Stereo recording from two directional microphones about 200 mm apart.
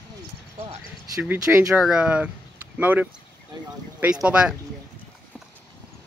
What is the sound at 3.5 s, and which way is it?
Speech, 20° right (ahead or behind).